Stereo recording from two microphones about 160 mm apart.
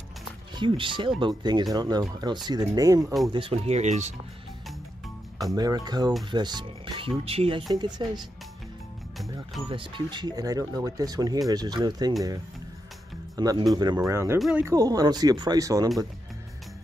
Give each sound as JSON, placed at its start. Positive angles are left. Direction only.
{"t": 0.6, "sound": "speech", "side_deg": -30}
{"t": 3.3, "sound": "speech", "side_deg": -35}
{"t": 5.5, "sound": "speech", "side_deg": -25}
{"t": 7.7, "sound": "speech", "side_deg": -25}
{"t": 9.7, "sound": "speech", "side_deg": -30}
{"t": 13.4, "sound": "speech", "side_deg": -25}
{"t": 14.7, "sound": "speech", "side_deg": -25}